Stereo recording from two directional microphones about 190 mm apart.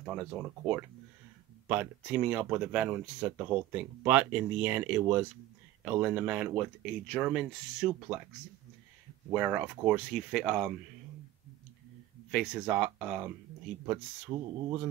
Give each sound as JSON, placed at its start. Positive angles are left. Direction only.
{"t": 0.0, "sound": "speech", "side_deg": -5}
{"t": 9.3, "sound": "speech", "side_deg": -5}
{"t": 12.3, "sound": "speech", "side_deg": -5}
{"t": 14.3, "sound": "speech", "side_deg": -20}